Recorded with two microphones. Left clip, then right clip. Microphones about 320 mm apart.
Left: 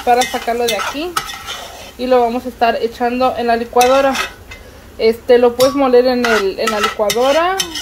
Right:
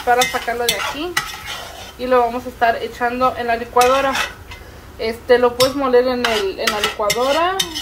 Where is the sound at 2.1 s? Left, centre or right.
Left.